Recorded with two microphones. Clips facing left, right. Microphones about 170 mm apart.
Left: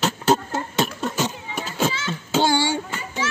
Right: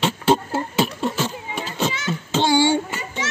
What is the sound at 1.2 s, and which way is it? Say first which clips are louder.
Music: even; 10° left (ahead or behind).